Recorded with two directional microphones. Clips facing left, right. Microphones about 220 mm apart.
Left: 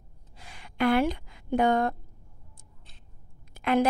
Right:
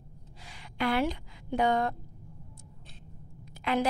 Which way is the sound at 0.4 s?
55° left (ahead or behind).